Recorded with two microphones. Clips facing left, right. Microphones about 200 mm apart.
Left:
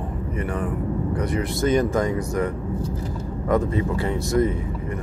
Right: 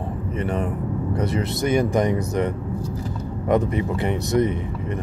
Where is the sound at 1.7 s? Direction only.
15° right (ahead or behind).